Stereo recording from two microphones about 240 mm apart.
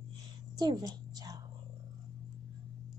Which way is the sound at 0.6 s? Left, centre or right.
Centre.